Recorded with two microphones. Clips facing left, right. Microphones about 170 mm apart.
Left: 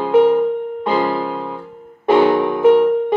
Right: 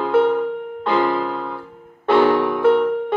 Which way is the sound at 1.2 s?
15° left (ahead or behind).